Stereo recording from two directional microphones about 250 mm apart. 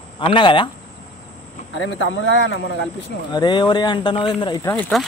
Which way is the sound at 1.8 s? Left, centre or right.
Left.